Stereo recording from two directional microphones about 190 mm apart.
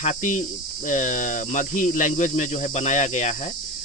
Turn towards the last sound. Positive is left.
turn(degrees=40)  # may be behind; listen again after turning